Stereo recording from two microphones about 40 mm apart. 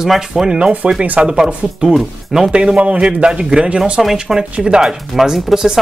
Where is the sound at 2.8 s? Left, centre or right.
Right.